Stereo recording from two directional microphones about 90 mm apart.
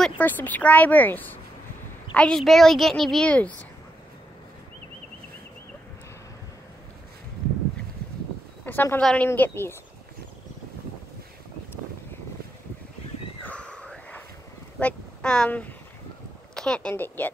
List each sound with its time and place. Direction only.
0.2 s speech: 20° left (ahead or behind)
2.1 s a child's voice: 5° left (ahead or behind)
3.3 s a woman's voice: 15° left (ahead or behind)
8.6 s a woman's voice: 20° left (ahead or behind)
9.3 s speech: 25° left (ahead or behind)
13.4 s a sound: 15° left (ahead or behind)
14.8 s speech: 10° left (ahead or behind)
16.9 s speech: 20° left (ahead or behind)